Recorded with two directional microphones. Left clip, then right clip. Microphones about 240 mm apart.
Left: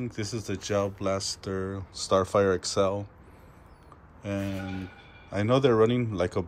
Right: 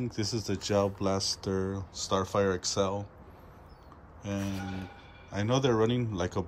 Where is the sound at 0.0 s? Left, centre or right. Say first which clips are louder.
Right 1 dB; centre.